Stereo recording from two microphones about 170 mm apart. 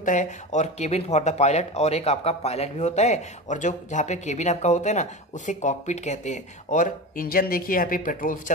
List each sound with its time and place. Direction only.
0.0 s speech: 45° left (ahead or behind)